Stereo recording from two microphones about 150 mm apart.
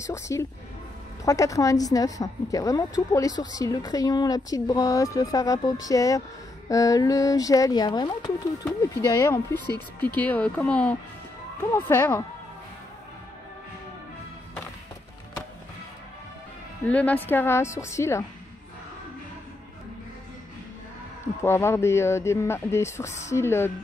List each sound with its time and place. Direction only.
0.0 s a woman's voice: 20° left (ahead or behind)
8.9 s speech: 15° left (ahead or behind)
9.7 s speech: 30° right (ahead or behind)
10.0 s speech: 10° left (ahead or behind)
16.8 s speech: 10° left (ahead or behind)
21.4 s speech: 15° left (ahead or behind)